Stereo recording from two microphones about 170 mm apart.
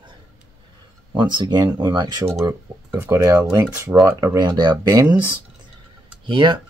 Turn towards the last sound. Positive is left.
turn(degrees=-30)  # may be behind; listen again after turning